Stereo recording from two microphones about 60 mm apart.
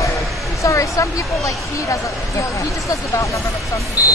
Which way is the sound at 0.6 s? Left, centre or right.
Left.